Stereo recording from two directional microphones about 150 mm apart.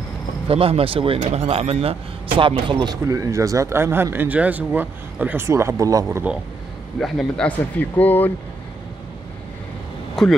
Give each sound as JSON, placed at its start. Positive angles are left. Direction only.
{"t": 0.5, "sound": "speech", "side_deg": -40}
{"t": 7.0, "sound": "a man's voice", "side_deg": 5}